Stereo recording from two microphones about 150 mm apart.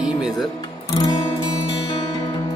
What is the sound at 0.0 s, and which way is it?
Music, centre (ahead or behind).